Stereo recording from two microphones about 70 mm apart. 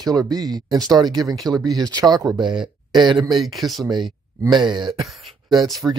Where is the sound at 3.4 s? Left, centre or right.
Centre.